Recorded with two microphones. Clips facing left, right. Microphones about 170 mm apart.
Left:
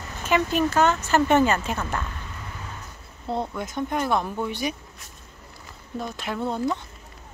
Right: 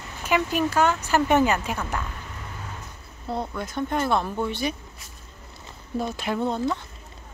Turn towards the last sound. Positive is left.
turn(degrees=5)  # may be behind; listen again after turning